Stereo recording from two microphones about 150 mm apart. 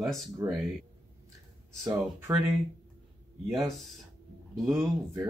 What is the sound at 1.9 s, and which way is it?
Speech, 15° right (ahead or behind).